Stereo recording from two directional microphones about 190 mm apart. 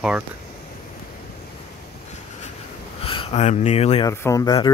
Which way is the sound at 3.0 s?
30° left (ahead or behind).